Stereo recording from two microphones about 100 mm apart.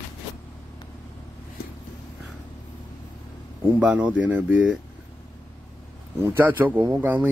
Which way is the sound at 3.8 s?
15° right (ahead or behind).